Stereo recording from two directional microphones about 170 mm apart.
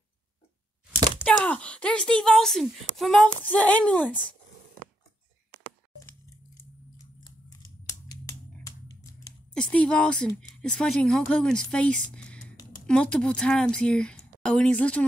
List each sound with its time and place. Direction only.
0.9 s a sound: 30° right (ahead or behind)
1.2 s speech: 5° left (ahead or behind)
7.2 s scissors: 20° left (ahead or behind)
9.5 s speech: 5° left (ahead or behind)